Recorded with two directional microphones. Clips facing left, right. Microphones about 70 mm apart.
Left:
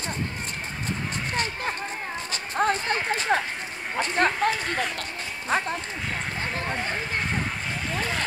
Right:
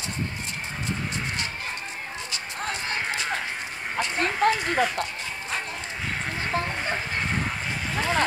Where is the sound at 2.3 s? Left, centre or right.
Left.